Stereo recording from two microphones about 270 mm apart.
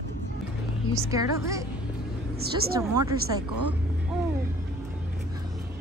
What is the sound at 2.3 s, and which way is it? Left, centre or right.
Speech, right.